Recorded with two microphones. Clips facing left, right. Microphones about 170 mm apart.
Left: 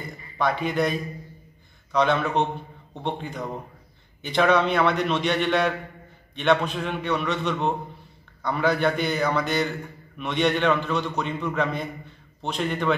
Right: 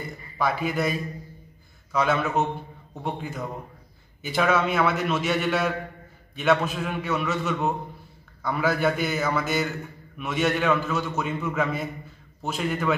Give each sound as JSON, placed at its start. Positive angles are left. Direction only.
{"t": 0.4, "sound": "a man's voice", "side_deg": -5}